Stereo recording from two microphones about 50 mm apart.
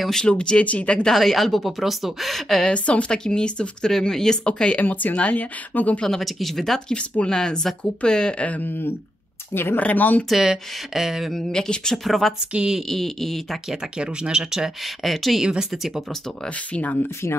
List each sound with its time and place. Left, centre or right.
0.2 s speech: centre
1.1 s speech: centre
2.6 s speech: left
6.0 s speech: centre
6.9 s speech: left
8.5 s speech: left
9.8 s speech: left
10.3 s speech: centre
11.3 s speech: centre
12.5 s speech: centre
12.8 s speech: centre
13.7 s speech: centre
15.0 s speech: centre
15.4 s speech: centre